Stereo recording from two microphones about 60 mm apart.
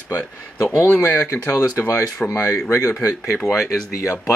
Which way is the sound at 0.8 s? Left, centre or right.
Left.